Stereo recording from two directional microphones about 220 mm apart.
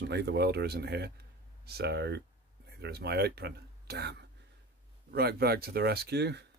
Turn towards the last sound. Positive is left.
turn(degrees=-50)  # may be behind; listen again after turning